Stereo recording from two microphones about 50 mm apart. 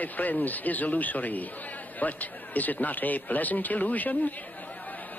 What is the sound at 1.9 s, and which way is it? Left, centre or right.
Speech, left.